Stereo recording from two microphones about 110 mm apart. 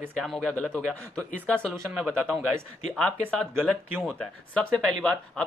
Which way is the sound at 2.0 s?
15° right (ahead or behind).